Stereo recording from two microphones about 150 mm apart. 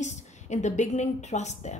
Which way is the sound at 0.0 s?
50° left (ahead or behind).